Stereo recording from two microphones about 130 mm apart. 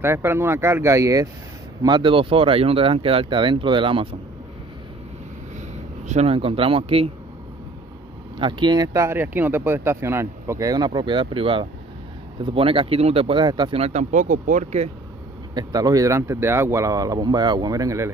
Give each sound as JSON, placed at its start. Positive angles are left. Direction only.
{"t": 0.0, "sound": "speech", "side_deg": -20}
{"t": 1.8, "sound": "speech", "side_deg": -35}
{"t": 6.0, "sound": "speech", "side_deg": -55}
{"t": 8.4, "sound": "speech", "side_deg": -35}
{"t": 13.7, "sound": "speech", "side_deg": -50}
{"t": 14.1, "sound": "speech", "side_deg": -80}
{"t": 15.5, "sound": "speech", "side_deg": -30}